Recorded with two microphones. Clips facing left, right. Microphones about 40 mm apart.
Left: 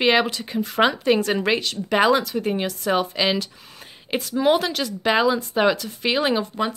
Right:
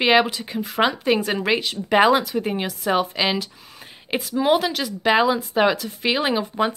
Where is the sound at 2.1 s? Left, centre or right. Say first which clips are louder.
Even; centre.